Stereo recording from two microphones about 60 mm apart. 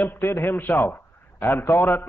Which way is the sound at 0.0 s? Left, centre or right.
Left.